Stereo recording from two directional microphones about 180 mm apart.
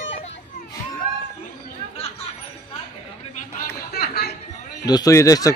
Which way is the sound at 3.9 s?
60° left (ahead or behind).